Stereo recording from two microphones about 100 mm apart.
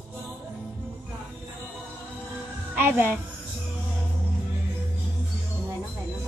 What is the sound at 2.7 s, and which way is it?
Speech, 20° right (ahead or behind).